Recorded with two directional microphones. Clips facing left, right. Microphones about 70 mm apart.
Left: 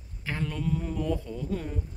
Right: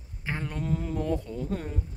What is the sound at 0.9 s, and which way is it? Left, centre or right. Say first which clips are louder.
Speech: right 1 dB; right.